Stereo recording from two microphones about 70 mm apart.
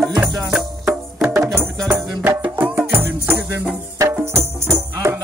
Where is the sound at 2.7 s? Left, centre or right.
Right.